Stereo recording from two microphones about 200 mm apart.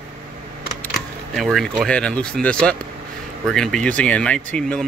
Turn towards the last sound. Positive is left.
turn(degrees=5)  # may be behind; listen again after turning